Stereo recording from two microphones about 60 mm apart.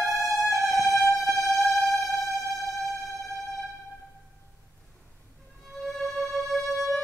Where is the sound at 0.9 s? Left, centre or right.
Left.